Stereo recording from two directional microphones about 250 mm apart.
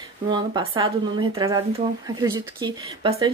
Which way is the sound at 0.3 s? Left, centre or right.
Centre.